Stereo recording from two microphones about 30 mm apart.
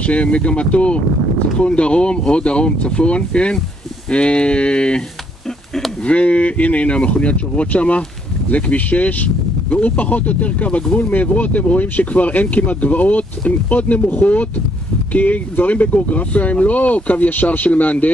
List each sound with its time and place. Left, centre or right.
0.0 s speech: left
6.0 s speech: left
17.6 s speech: left